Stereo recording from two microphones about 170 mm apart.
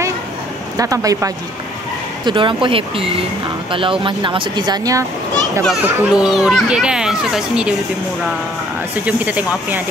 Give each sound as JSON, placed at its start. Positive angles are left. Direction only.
{"t": 0.7, "sound": "speech", "side_deg": -20}
{"t": 5.7, "sound": "a child's voice", "side_deg": 0}
{"t": 9.0, "sound": "speech", "side_deg": -10}